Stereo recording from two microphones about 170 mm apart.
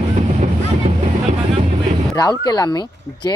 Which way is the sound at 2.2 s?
20° left (ahead or behind).